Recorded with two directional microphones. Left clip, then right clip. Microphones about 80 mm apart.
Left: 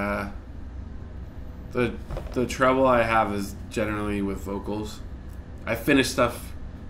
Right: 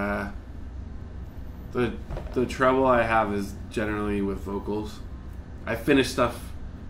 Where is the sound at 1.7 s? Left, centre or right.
Left.